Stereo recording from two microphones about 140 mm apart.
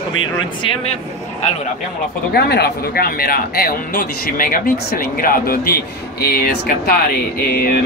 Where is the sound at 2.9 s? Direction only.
90° left.